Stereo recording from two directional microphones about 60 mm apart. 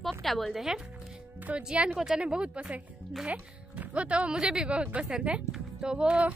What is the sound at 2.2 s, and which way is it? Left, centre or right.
Speech, centre.